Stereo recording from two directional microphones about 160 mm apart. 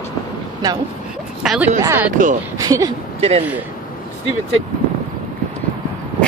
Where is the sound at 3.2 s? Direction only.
40° right (ahead or behind).